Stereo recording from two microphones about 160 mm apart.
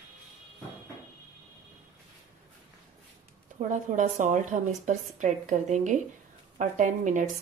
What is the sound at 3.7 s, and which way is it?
A woman's voice, 50° right (ahead or behind).